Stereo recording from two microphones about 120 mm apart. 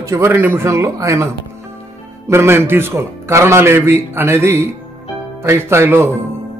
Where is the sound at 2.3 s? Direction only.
20° right (ahead or behind).